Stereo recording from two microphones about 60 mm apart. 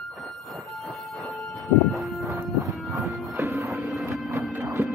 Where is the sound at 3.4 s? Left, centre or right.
Right.